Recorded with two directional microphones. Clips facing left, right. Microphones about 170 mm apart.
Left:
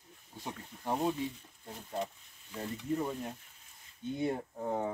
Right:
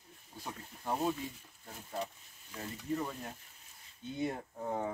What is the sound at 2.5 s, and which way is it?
Frying, 25° left (ahead or behind).